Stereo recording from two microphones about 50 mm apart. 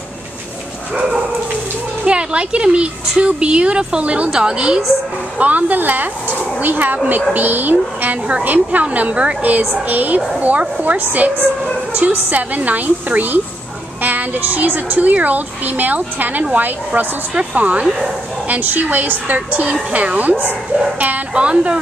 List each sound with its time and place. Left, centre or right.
2.0 s speech: right
5.4 s a woman's voice: right